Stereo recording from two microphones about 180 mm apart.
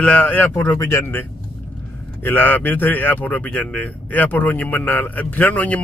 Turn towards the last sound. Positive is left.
turn(degrees=10)  # may be behind; listen again after turning